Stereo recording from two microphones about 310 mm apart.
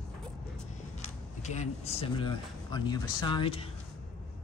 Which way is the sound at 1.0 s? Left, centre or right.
Left.